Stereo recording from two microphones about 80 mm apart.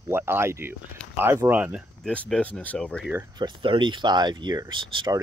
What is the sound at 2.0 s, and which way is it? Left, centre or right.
Speech, centre.